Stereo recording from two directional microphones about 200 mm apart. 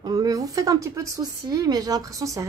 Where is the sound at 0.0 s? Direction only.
20° right (ahead or behind).